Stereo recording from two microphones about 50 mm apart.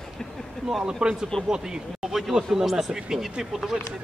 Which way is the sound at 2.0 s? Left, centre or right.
Centre.